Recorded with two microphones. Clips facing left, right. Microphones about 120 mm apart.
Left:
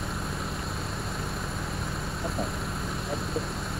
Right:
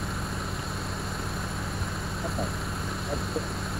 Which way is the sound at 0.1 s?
Centre (ahead or behind).